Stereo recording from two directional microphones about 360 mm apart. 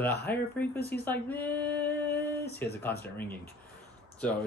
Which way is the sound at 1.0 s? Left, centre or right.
Centre.